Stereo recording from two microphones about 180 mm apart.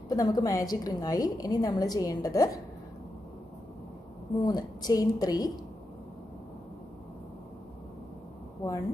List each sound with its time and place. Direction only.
0.1 s a woman's voice: 20° left (ahead or behind)
4.4 s a woman's voice: 25° left (ahead or behind)